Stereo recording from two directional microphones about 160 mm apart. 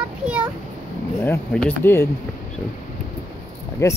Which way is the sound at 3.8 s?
20° left (ahead or behind).